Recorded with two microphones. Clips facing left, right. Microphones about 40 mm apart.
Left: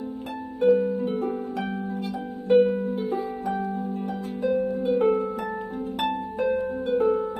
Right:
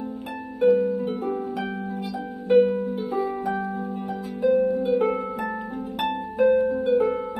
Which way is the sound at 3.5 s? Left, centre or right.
Right.